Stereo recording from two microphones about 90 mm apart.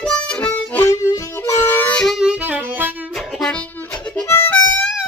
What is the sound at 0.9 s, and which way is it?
Music, 35° left (ahead or behind).